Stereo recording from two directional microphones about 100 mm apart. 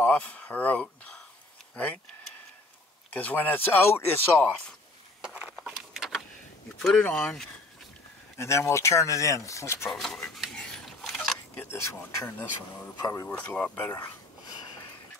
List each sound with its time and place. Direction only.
0.0 s speech: 15° left (ahead or behind)
3.1 s speech: 15° left (ahead or behind)
4.5 s speech: 10° left (ahead or behind)
5.2 s a sound: 15° right (ahead or behind)
5.6 s a sound: centre (ahead or behind)
6.8 s speech: 5° left (ahead or behind)
8.4 s speech: 30° left (ahead or behind)
9.8 s a sound: centre (ahead or behind)
11.7 s speech: 30° left (ahead or behind)
13.0 s speech: 35° left (ahead or behind)
13.3 s speech: 15° left (ahead or behind)